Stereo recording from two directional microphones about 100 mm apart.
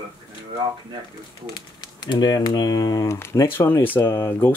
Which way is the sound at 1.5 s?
45° left (ahead or behind).